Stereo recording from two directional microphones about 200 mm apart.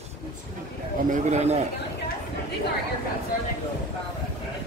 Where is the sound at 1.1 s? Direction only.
35° right (ahead or behind).